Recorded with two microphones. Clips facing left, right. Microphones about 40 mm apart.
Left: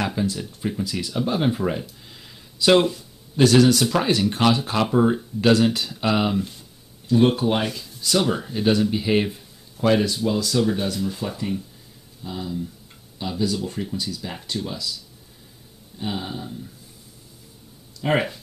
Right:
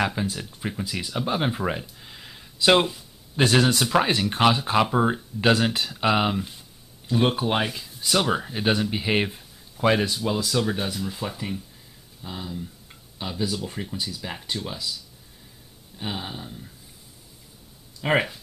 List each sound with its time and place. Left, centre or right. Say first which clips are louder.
0.0 s speech: left 1 dB; centre
3.3 s speech: left 4 dB; right
16.0 s speech: left 3 dB; centre
18.0 s speech: left 1 dB; right